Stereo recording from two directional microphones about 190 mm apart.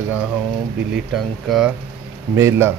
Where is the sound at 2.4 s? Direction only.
15° right (ahead or behind).